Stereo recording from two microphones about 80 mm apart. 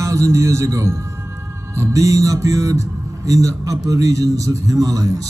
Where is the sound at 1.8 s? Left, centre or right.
Right.